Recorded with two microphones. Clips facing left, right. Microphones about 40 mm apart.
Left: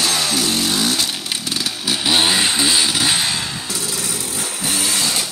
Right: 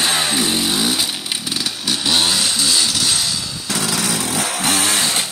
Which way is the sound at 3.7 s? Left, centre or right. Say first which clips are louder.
Right 5 dB; right.